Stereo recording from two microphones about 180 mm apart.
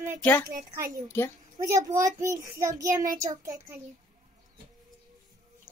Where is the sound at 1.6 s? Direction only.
15° right (ahead or behind).